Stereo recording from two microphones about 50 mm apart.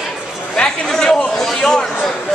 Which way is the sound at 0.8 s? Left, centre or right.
Centre.